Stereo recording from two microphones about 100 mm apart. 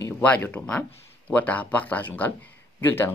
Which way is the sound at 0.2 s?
15° left (ahead or behind).